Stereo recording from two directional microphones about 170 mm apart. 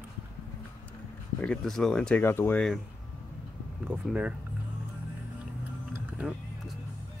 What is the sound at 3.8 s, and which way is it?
Speech, 10° right (ahead or behind).